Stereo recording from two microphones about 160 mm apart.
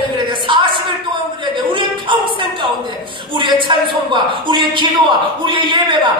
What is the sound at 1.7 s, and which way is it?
Speech, 30° right (ahead or behind).